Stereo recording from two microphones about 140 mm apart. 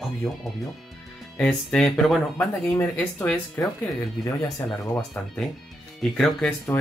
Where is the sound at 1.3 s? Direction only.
5° left (ahead or behind).